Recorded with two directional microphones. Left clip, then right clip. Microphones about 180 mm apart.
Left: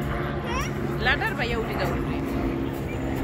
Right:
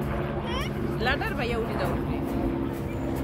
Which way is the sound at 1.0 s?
60° right (ahead or behind).